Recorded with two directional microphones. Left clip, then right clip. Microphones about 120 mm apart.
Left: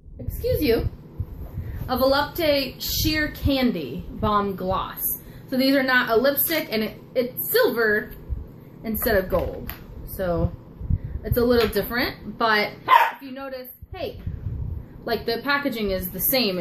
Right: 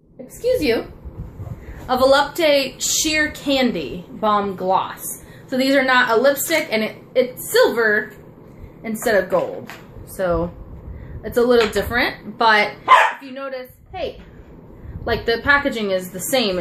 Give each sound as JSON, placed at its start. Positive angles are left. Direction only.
{"t": 0.4, "sound": "a woman's voice", "side_deg": 0}
{"t": 1.9, "sound": "a woman's voice", "side_deg": -5}
{"t": 15.0, "sound": "a woman's voice", "side_deg": 0}